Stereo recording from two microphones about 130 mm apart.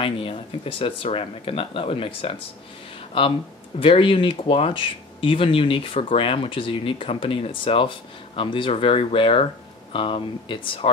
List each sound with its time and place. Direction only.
0.0 s speech: 45° left (ahead or behind)